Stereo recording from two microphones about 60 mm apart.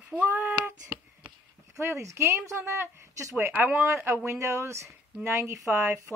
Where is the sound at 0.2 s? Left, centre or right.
Right.